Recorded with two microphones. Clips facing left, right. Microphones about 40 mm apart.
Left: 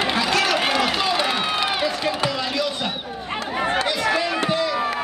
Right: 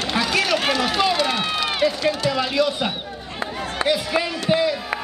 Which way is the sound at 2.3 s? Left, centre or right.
Centre.